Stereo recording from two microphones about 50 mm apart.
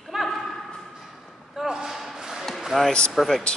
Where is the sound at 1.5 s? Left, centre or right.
Centre.